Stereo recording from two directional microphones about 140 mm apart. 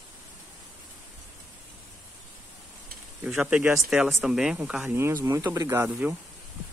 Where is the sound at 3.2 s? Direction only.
5° right (ahead or behind).